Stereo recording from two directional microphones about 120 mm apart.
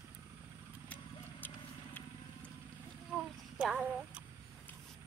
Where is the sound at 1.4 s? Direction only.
15° left (ahead or behind).